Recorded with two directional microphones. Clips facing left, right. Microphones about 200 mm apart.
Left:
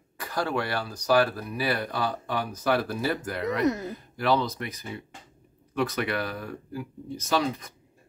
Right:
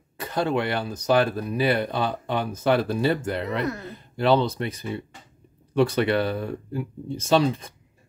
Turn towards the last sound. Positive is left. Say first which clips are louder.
# right 6 dB
turn(degrees=-25)  # may be behind; listen again after turning